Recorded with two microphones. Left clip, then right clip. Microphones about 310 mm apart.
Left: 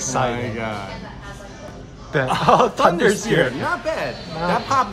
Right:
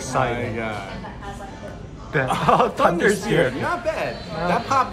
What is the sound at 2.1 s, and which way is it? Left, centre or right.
Speech, centre.